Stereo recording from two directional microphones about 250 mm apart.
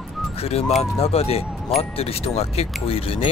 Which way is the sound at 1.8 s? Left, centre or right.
Left.